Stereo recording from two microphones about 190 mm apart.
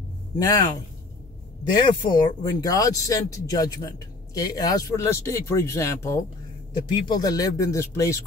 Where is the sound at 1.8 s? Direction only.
25° left (ahead or behind).